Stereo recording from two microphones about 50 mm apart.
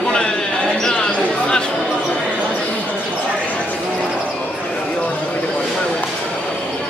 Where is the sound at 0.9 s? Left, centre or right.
Centre.